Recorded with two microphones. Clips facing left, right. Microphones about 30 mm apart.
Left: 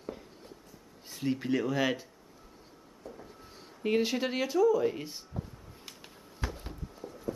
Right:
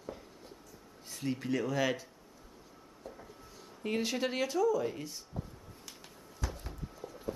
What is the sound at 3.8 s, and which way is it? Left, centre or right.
Speech, centre.